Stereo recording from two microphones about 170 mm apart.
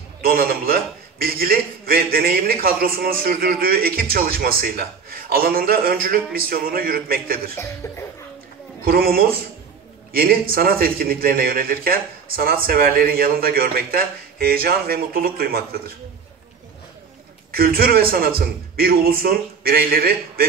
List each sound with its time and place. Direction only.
0.2 s a man's voice: 60° right (ahead or behind)
7.5 s cough: 15° left (ahead or behind)
8.8 s a man's voice: 60° right (ahead or behind)
17.5 s a man's voice: 60° right (ahead or behind)